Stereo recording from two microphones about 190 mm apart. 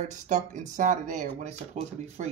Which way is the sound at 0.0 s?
40° right (ahead or behind).